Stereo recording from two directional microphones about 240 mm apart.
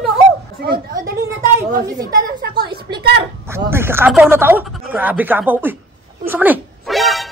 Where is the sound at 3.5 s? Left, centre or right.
Centre.